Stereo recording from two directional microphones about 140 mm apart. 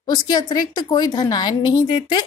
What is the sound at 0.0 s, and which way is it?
A woman's voice, 30° left (ahead or behind).